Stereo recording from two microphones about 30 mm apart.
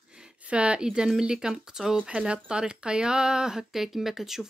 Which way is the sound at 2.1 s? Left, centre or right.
Right.